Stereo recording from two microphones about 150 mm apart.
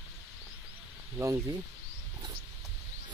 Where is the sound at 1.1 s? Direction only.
20° right (ahead or behind).